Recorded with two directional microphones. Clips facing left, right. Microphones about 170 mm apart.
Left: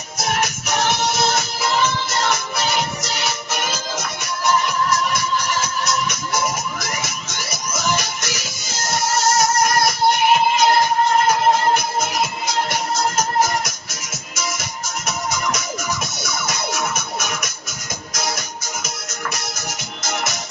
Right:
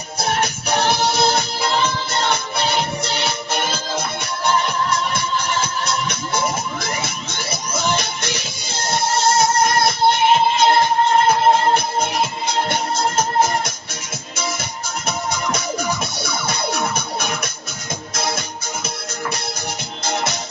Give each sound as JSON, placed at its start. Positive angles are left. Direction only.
{"t": 0.2, "sound": "music", "side_deg": -30}
{"t": 20.0, "sound": "music", "side_deg": -30}